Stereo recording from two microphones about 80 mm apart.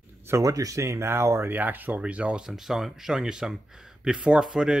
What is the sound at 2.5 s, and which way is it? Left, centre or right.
Speech, centre.